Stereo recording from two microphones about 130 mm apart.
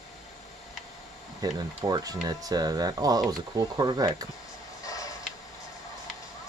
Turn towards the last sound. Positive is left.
turn(degrees=25)  # may be behind; listen again after turning